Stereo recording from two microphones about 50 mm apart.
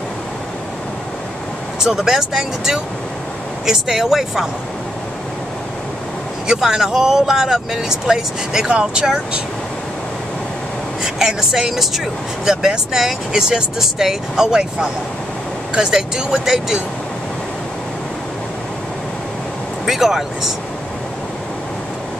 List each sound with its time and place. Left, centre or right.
1.8 s speech: centre
6.4 s speech: centre
11.0 s speech: centre
15.9 s speech: centre
19.9 s speech: centre